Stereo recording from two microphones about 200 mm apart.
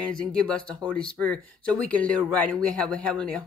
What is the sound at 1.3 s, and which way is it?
Speech, 5° left (ahead or behind).